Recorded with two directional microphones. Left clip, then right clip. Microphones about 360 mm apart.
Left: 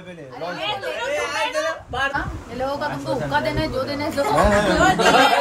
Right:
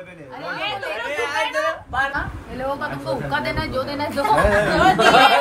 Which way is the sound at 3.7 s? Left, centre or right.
Centre.